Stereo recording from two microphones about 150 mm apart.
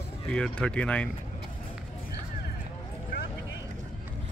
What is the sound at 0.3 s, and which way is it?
Speech, 5° left (ahead or behind).